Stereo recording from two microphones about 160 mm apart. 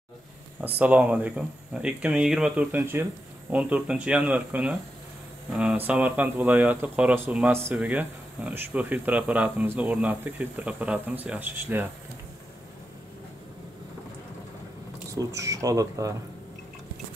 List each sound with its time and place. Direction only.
0.6 s speech: 10° right (ahead or behind)
15.1 s speech: 20° right (ahead or behind)